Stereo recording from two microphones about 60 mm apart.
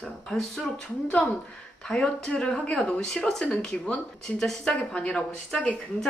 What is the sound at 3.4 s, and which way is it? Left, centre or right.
Speech, left.